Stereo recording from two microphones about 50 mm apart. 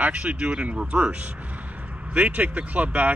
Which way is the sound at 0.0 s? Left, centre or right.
Right.